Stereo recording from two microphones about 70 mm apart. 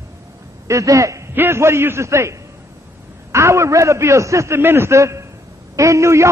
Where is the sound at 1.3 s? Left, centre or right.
Right.